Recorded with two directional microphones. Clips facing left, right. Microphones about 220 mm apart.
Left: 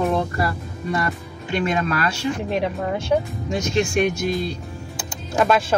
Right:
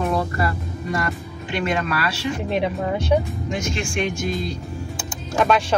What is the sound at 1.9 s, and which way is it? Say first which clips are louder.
Speech: left 1 dB; 45° left (ahead or behind).